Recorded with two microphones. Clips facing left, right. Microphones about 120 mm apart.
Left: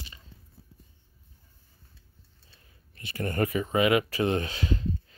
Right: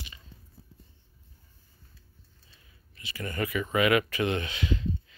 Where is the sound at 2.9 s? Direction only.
50° left (ahead or behind).